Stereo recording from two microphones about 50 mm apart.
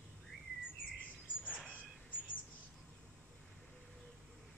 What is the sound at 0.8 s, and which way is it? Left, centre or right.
Bird vocalization, left.